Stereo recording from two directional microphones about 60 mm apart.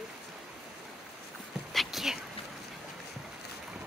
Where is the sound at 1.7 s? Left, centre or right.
Centre.